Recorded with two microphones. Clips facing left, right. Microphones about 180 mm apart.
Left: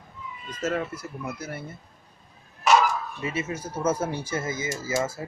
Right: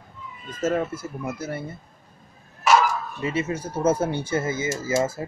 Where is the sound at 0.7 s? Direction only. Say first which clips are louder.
Right 4 dB; 25° right (ahead or behind).